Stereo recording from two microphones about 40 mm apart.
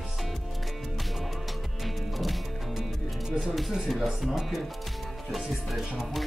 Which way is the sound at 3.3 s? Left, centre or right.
Centre.